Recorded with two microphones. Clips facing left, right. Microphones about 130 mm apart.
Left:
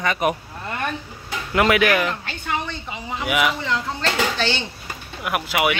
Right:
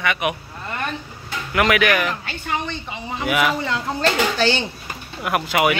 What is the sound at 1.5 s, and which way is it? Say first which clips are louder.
Speech: left 1 dB; 25° left (ahead or behind).